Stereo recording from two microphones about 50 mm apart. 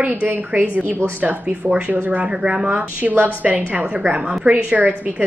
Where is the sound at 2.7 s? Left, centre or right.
Right.